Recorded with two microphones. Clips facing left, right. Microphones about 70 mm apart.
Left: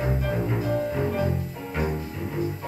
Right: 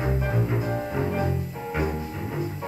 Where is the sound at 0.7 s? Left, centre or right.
Centre.